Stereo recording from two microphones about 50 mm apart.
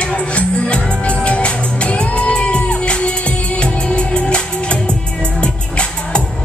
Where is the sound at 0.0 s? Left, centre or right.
Left.